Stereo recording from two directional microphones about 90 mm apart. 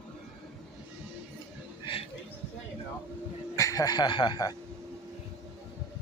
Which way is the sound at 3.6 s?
40° left (ahead or behind).